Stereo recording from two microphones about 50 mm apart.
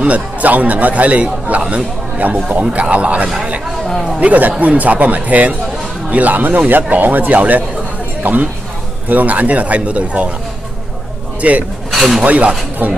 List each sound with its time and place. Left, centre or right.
0.0 s a man's voice: right
11.4 s a man's voice: right
11.9 s a sound: centre
12.2 s a man's voice: right